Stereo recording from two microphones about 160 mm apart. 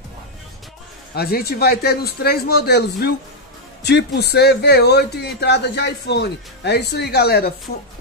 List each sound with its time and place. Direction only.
1.1 s speech: 80° left